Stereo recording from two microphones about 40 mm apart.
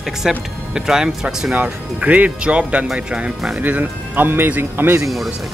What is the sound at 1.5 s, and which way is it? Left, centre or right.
Speech, right.